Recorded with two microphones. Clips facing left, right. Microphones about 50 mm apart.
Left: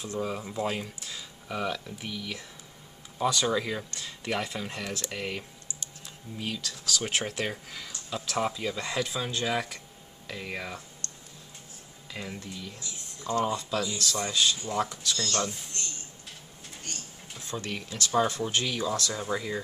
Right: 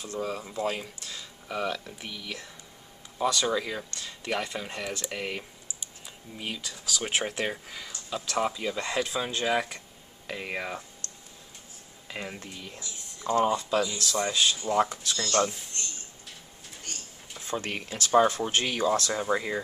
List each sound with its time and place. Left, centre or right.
0.0 s speech: centre
12.1 s speech: right
15.0 s speech: right
17.5 s speech: right